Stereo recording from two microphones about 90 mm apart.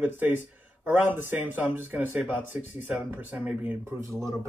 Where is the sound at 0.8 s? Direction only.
20° right (ahead or behind).